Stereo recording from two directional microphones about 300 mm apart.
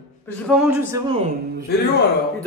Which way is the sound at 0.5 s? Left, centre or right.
Centre.